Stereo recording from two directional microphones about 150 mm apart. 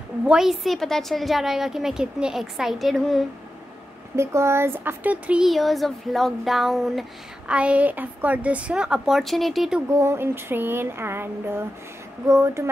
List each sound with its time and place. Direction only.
0.3 s a woman's voice: centre (ahead or behind)
4.2 s speech: 20° right (ahead or behind); by 9.8 s 5° right (ahead or behind)
9.8 s speech: 20° right (ahead or behind)